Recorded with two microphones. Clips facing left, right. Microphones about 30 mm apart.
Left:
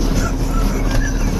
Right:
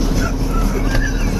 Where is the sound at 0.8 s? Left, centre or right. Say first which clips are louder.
Right 1 dB; centre.